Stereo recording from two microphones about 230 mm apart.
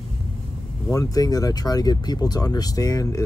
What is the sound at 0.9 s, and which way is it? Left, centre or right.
Speech, centre.